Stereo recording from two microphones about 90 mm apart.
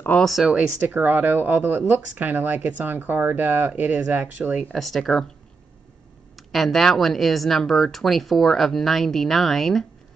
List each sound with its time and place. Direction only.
0.2 s speech: centre (ahead or behind)
0.7 s speech: 20° right (ahead or behind)
4.7 s speech: centre (ahead or behind)
6.3 s speech: centre (ahead or behind)